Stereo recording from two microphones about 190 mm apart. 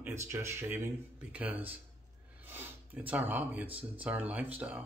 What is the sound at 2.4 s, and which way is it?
Speech, 10° right (ahead or behind).